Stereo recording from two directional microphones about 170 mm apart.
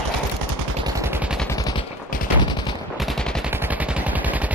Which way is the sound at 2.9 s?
Centre (ahead or behind).